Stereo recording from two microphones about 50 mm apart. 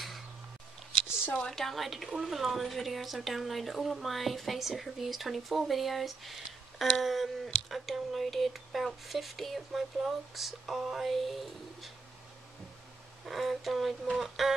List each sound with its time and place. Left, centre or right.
1.3 s a woman's voice: centre
13.2 s a woman's voice: centre